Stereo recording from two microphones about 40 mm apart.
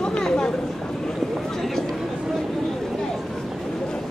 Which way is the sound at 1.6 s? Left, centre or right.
Centre.